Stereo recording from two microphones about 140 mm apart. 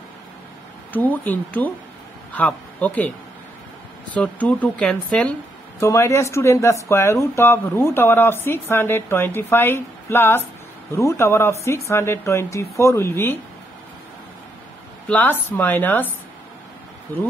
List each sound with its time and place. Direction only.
0.9 s a man's voice: 10° left (ahead or behind)
4.1 s speech: 10° left (ahead or behind)
5.8 s speech: 20° left (ahead or behind)
15.0 s speech: 10° left (ahead or behind)